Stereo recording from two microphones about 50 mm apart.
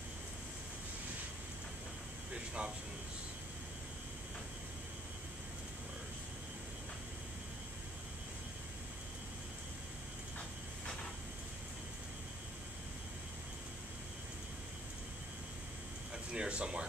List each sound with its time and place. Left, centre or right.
2.3 s air conditioning: right
16.3 s speech: right